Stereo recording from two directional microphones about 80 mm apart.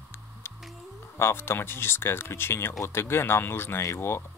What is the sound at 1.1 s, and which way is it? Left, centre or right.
Speech, left.